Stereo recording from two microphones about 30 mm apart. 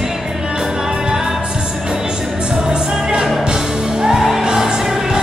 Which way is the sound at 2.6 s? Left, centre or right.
Right.